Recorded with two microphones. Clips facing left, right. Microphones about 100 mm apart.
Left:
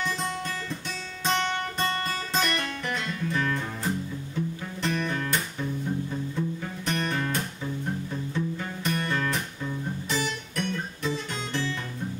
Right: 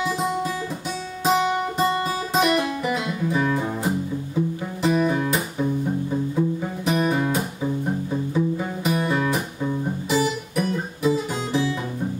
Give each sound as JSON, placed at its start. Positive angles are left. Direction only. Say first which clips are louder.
{"t": 0.0, "sound": "guitar", "louder": "right 7 dB", "side_deg": -5}
{"t": 1.2, "sound": "music", "louder": "right 7 dB", "side_deg": -5}
{"t": 9.6, "sound": "music", "louder": "right 7 dB", "side_deg": -25}
{"t": 10.0, "sound": "guitar", "louder": "right 9 dB", "side_deg": -5}